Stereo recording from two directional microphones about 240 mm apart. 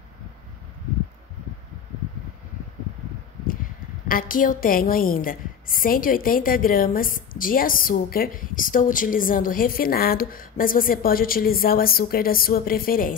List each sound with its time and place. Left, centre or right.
4.1 s a woman's voice: left